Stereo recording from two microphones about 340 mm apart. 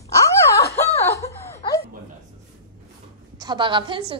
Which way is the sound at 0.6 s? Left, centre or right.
Centre.